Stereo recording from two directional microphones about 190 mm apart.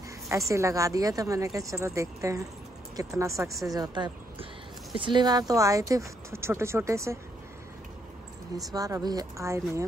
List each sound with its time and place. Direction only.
0.5 s speech: 15° right (ahead or behind)
8.7 s speech: 20° right (ahead or behind)